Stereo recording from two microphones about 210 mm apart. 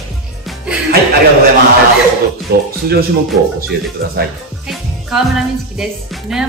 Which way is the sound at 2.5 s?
50° right (ahead or behind).